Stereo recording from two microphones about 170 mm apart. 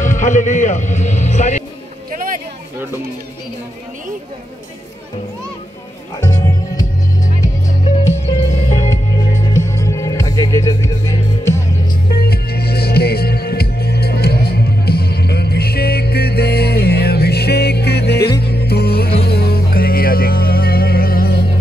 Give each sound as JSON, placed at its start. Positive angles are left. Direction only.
{"t": 0.0, "sound": "a man's voice", "side_deg": 45}
{"t": 2.0, "sound": "a sound", "side_deg": -55}
{"t": 6.2, "sound": "music", "side_deg": 20}
{"t": 8.3, "sound": "music", "side_deg": 40}
{"t": 9.5, "sound": "music", "side_deg": 15}
{"t": 12.1, "sound": "music", "side_deg": 65}